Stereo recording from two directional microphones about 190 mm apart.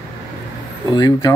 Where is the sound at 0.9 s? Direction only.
20° left (ahead or behind).